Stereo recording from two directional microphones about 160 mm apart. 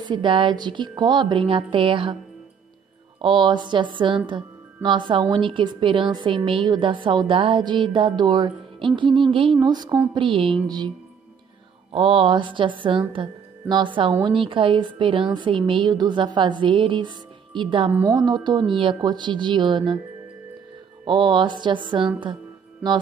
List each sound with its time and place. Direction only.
0.0 s music: 30° right (ahead or behind)
3.2 s a woman's voice: 30° right (ahead or behind)
4.3 s music: 30° right (ahead or behind)
11.9 s music: 35° right (ahead or behind)
13.1 s speech: 30° right (ahead or behind)
14.2 s music: 30° right (ahead or behind)
17.9 s a woman's voice: 20° right (ahead or behind)
21.0 s a woman's voice: 30° right (ahead or behind)